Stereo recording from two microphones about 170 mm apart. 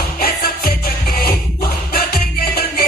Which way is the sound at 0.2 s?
60° left (ahead or behind).